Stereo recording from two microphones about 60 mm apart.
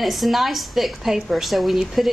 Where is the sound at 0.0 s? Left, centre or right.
Centre.